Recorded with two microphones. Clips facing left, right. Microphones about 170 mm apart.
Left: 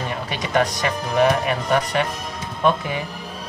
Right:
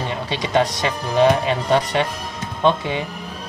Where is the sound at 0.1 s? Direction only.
25° right (ahead or behind).